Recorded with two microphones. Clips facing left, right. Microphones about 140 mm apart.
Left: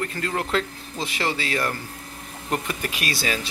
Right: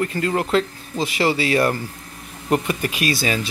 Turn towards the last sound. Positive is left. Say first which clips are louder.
# right 5 dB
turn(degrees=-5)  # may be behind; listen again after turning